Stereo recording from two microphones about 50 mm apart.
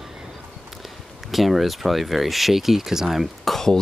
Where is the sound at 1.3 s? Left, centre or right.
Centre.